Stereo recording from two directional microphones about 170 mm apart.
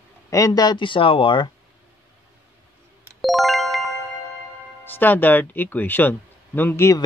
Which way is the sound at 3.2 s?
Centre (ahead or behind).